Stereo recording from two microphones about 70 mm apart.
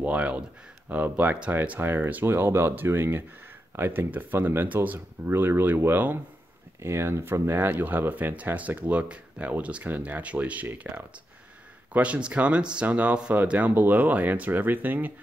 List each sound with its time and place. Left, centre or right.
0.0 s speech: centre
6.8 s speech: right